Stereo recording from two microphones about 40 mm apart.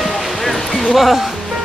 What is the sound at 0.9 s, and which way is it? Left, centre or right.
Speech, centre.